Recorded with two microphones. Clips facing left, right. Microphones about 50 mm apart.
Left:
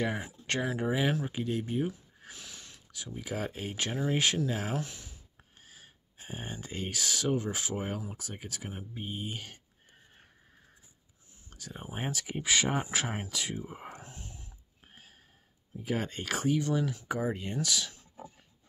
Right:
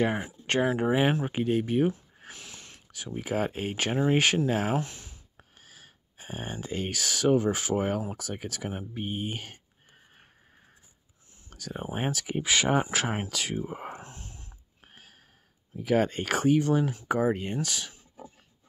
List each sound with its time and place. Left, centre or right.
0.0 s speech: right
5.6 s gasp: right
6.4 s speech: right
8.6 s speech: right
11.5 s speech: right
12.1 s speech: right
13.1 s speech: right
13.9 s a sound: right
15.8 s speech: right
16.1 s speech: right